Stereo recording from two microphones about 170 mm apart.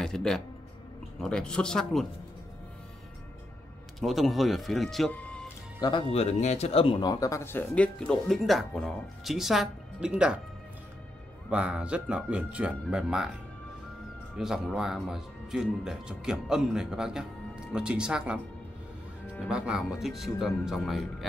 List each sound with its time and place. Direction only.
0.0 s music: 5° left (ahead or behind)
1.2 s speech: 5° left (ahead or behind)
4.0 s speech: centre (ahead or behind)
5.8 s speech: 25° left (ahead or behind)
6.1 s speech: 40° left (ahead or behind); by 10.4 s 5° right (ahead or behind)
11.5 s speech: 5° right (ahead or behind)
14.3 s speech: 5° right (ahead or behind)
19.4 s speech: 5° right (ahead or behind)